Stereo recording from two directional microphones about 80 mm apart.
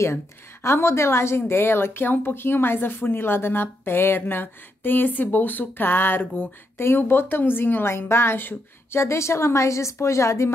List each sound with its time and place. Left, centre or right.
0.0 s a woman's voice: left